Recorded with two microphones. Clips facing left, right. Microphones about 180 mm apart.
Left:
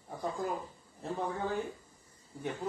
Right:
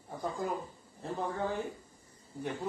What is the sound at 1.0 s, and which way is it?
Speech, centre (ahead or behind).